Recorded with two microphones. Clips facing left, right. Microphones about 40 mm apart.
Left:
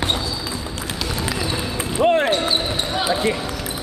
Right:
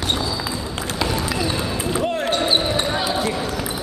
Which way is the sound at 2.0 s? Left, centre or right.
Left.